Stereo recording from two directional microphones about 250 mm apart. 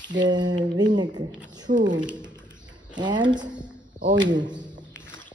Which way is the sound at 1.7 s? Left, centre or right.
Right.